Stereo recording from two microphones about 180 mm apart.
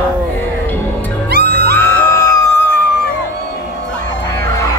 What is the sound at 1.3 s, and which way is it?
Music, 60° right (ahead or behind).